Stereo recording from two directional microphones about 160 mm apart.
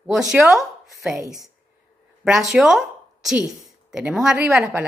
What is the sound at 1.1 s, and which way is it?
Speech, 20° right (ahead or behind).